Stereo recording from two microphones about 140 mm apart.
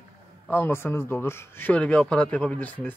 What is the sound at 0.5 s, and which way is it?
Speech, 15° left (ahead or behind).